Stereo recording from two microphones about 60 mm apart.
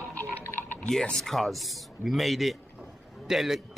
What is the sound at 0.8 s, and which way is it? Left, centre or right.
A man's voice, centre.